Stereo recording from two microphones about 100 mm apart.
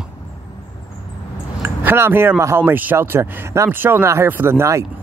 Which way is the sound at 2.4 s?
25° right (ahead or behind).